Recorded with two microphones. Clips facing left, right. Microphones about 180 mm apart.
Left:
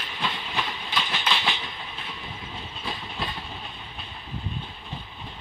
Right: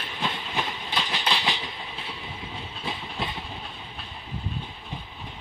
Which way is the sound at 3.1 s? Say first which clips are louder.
Right 1 dB; 20° right (ahead or behind).